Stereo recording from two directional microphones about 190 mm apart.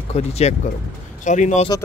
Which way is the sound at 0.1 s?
35° left (ahead or behind).